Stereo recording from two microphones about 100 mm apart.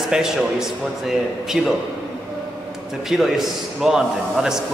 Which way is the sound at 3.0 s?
Centre (ahead or behind).